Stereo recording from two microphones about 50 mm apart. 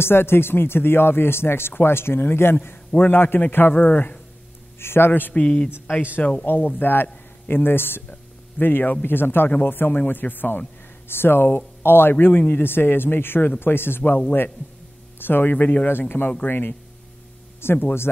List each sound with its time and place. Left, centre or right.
0.0 s speech: left
4.7 s speech: left
5.3 s speech: left
6.4 s a man's voice: left
15.1 s speech: left
15.5 s speech: left
15.9 s speech: left
17.6 s speech: left